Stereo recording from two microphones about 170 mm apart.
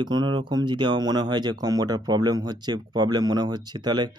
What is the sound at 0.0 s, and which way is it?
Speech, 25° right (ahead or behind).